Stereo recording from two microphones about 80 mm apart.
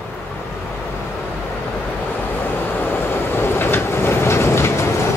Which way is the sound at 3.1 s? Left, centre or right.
Left.